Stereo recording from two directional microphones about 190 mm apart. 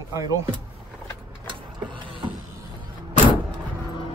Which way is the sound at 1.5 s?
25° right (ahead or behind).